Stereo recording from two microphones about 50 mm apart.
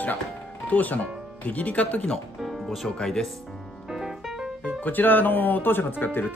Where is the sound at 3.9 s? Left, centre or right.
Centre.